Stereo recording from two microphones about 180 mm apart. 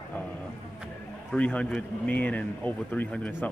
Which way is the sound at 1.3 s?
5° left (ahead or behind).